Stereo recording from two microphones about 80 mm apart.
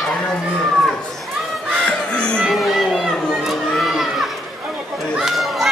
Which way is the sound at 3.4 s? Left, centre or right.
Centre.